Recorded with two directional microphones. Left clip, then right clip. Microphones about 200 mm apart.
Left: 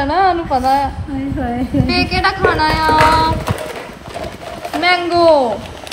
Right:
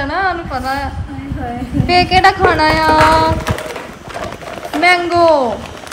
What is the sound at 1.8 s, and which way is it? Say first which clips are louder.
Child singing: right 7 dB; 20° right (ahead or behind).